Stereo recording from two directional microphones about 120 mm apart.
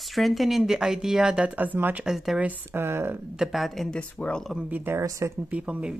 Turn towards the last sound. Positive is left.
turn(degrees=-10)  # may be behind; listen again after turning